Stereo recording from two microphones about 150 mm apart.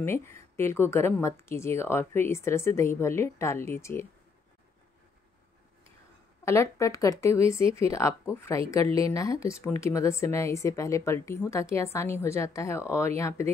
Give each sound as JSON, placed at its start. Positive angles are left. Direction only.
{"t": 0.0, "sound": "a woman's voice", "side_deg": 15}
{"t": 6.4, "sound": "a woman's voice", "side_deg": 20}